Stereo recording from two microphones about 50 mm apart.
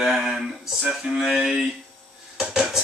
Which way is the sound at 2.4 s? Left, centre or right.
Centre.